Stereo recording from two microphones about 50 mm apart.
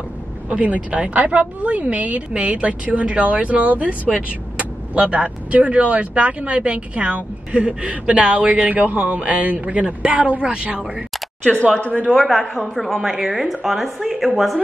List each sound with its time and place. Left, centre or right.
0.5 s speech: right
10.8 s speech: centre
11.4 s speech: left
12.1 s speech: centre